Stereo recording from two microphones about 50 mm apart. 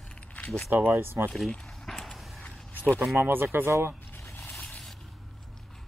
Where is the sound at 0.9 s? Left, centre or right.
Right.